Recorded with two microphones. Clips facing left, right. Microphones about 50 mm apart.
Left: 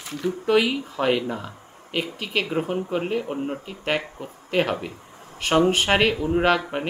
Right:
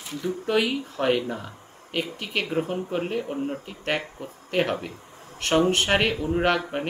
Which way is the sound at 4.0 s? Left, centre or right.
Left.